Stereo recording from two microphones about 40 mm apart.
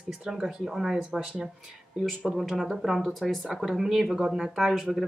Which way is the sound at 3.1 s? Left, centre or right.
Centre.